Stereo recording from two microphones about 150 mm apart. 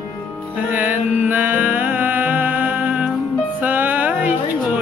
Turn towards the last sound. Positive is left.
turn(degrees=-10)  # may be behind; listen again after turning